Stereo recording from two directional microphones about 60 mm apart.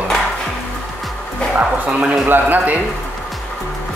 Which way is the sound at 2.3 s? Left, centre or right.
Right.